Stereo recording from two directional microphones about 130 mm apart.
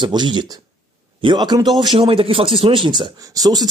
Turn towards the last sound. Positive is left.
turn(degrees=-30)  # may be behind; listen again after turning